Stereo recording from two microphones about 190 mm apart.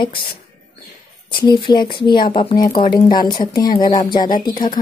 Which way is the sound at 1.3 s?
25° left (ahead or behind).